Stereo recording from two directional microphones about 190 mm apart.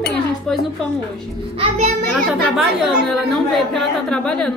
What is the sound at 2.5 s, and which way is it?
A woman's voice, centre (ahead or behind).